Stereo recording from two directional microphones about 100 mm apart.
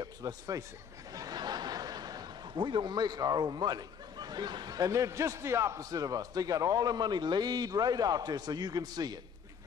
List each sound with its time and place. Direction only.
0.0 s a man's voice: 40° right (ahead or behind)